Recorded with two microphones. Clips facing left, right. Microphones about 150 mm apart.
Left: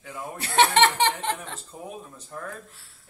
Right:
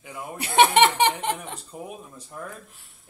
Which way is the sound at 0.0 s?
15° right (ahead or behind).